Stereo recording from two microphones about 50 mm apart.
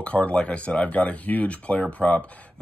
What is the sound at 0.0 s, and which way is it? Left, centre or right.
Speech, left.